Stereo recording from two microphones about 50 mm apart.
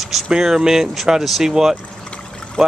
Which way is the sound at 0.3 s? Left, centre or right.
Centre.